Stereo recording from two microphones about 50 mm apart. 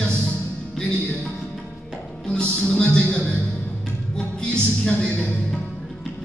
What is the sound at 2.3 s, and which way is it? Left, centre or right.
Speech, centre.